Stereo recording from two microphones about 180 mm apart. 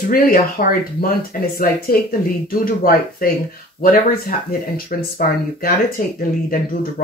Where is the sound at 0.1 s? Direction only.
50° left (ahead or behind).